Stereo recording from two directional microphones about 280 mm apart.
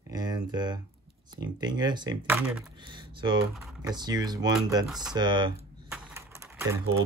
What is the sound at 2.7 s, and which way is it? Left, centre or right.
Speech, centre.